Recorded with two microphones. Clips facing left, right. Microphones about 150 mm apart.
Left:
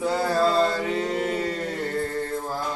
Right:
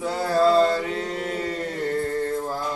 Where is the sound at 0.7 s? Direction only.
10° left (ahead or behind).